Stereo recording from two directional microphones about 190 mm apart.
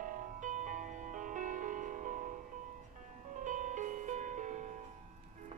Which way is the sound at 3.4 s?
40° right (ahead or behind).